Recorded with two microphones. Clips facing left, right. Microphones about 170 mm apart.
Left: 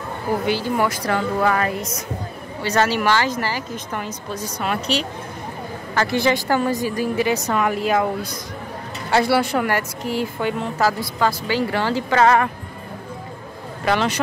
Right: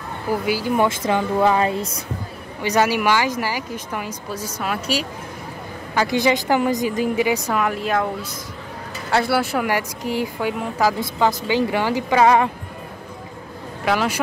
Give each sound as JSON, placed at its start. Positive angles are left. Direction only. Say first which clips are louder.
{"t": 0.7, "sound": "speech", "louder": "right 2 dB", "side_deg": -20}
{"t": 2.6, "sound": "a woman's voice", "louder": "right 1 dB", "side_deg": -15}
{"t": 7.6, "sound": "a woman's voice", "louder": "left 2 dB", "side_deg": 0}
{"t": 13.8, "sound": "a woman's voice", "louder": "even", "side_deg": -5}